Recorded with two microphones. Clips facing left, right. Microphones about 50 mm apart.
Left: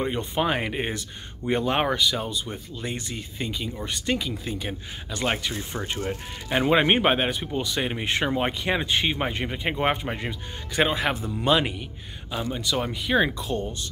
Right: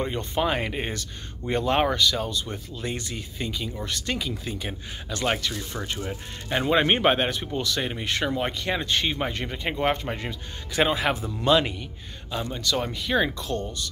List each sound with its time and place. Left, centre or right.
0.0 s speech: centre
5.5 s speech: left
6.5 s speech: centre